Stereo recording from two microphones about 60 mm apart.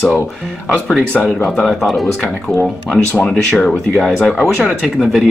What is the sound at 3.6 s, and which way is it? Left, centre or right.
Speech, centre.